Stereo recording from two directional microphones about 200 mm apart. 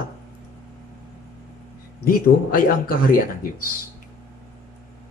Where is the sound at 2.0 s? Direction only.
45° left (ahead or behind).